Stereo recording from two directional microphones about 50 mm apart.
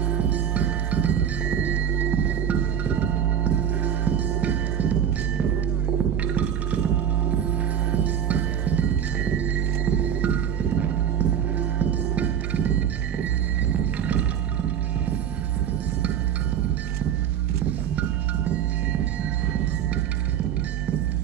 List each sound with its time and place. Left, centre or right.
0.1 s music: right
6.2 s music: right
17.6 s music: right